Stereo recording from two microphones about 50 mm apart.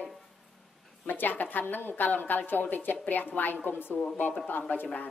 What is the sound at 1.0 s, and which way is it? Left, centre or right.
A woman's voice, left.